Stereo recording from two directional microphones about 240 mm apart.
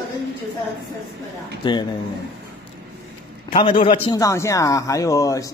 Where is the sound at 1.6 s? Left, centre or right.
Centre.